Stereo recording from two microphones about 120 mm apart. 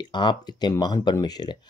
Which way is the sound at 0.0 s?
40° left (ahead or behind).